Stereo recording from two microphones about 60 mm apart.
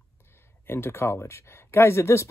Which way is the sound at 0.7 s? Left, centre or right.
Left.